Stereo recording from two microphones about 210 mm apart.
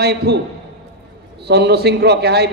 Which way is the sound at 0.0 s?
50° right (ahead or behind).